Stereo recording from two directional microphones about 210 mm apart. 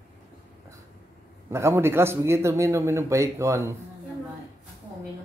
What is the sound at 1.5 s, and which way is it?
Speech, 10° right (ahead or behind).